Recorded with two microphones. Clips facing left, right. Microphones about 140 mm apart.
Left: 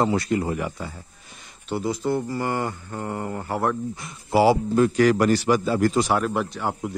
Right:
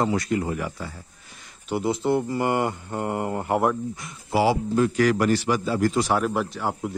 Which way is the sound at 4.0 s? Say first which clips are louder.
Left 3 dB; 35° left (ahead or behind).